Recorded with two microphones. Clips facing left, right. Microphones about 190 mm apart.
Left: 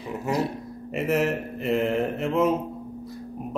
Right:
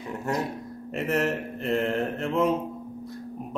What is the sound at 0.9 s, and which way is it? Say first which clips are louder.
Speech: left 2 dB; centre (ahead or behind).